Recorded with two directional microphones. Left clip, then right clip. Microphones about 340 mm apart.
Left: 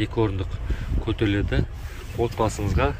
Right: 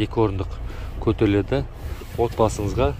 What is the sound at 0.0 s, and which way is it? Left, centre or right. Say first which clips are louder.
Speech: right 3 dB; centre.